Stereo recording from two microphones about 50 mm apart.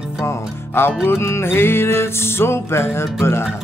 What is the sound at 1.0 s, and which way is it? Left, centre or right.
Music, left.